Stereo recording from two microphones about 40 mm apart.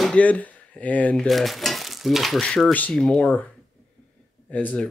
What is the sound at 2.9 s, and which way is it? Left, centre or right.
Speech, centre.